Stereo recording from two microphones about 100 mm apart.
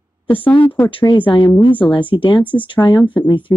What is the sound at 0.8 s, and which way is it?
Speech, 60° left (ahead or behind).